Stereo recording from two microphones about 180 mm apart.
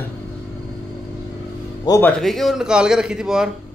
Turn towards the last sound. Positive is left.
turn(degrees=-5)  # may be behind; listen again after turning